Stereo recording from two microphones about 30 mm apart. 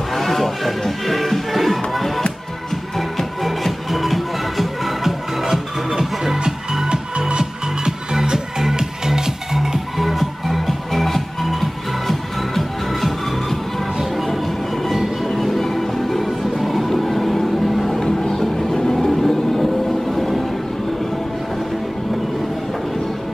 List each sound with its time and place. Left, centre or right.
0.1 s music: centre
5.4 s music: centre
6.9 s music: right; by 9.8 s centre
9.9 s music: centre
18.3 s a sound: centre
19.0 s vehicle: centre